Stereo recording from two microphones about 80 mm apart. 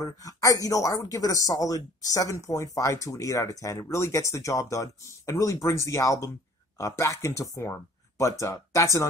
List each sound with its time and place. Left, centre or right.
0.0 s speech: left